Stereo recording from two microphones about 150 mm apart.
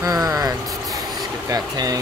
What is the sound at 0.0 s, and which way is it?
Vehicle, 25° right (ahead or behind).